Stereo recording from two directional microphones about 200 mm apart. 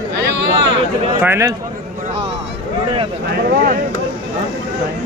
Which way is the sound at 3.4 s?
50° right (ahead or behind).